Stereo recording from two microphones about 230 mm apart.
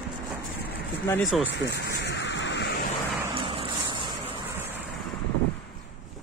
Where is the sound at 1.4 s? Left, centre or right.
Left.